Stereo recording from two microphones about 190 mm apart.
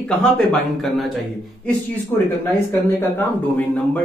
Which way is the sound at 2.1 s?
10° left (ahead or behind).